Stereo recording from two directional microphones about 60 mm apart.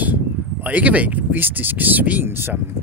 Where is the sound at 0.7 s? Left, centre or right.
Right.